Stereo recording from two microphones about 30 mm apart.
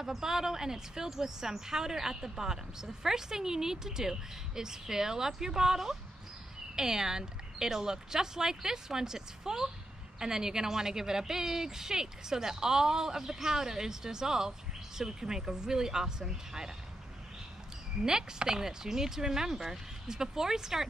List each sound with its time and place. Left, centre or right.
0.0 s a woman's voice: centre
18.0 s a woman's voice: right